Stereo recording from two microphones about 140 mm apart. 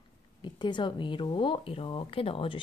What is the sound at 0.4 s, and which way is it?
Speech, 35° left (ahead or behind).